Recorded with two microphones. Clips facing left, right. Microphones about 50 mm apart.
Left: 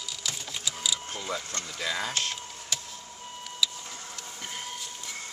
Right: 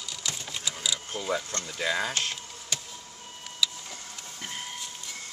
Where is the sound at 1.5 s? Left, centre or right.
Centre.